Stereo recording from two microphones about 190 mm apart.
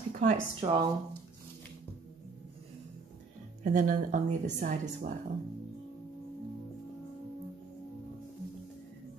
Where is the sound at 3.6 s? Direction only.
45° right (ahead or behind).